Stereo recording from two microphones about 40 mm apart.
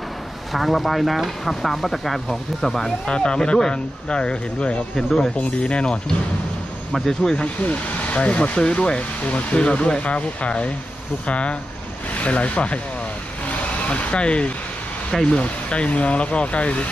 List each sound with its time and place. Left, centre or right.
0.5 s speech: centre
3.1 s speech: left
4.9 s speech: centre
5.4 s speech: left
6.9 s speech: centre
7.6 s speech: left
13.5 s vehicle: left
15.2 s speech: left